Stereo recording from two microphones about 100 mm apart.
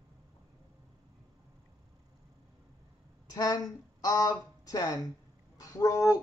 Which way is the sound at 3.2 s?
40° left (ahead or behind).